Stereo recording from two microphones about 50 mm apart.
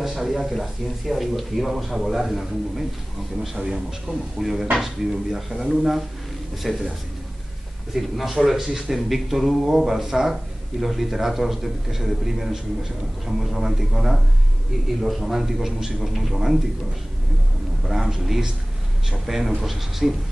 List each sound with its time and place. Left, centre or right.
0.0 s speech: centre
7.9 s speech: centre
17.8 s speech: centre